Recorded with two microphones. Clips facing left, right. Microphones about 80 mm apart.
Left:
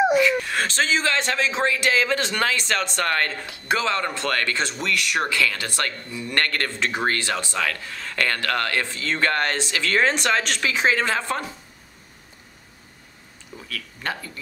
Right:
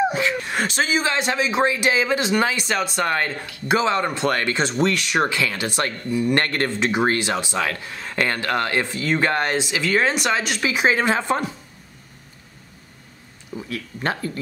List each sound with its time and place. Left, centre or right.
0.1 s speech: right
13.7 s speech: right